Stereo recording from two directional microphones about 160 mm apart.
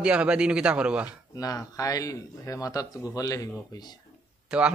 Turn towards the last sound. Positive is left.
turn(degrees=-5)  # may be behind; listen again after turning